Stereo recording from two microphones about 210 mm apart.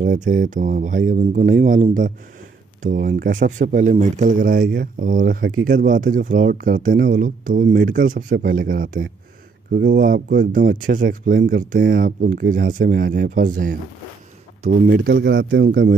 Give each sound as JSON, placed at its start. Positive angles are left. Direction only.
{"t": 0.0, "sound": "speech", "side_deg": -40}
{"t": 14.9, "sound": "speech", "side_deg": -50}